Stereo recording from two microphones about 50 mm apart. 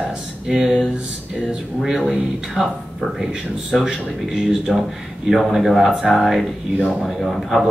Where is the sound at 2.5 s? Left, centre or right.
Centre.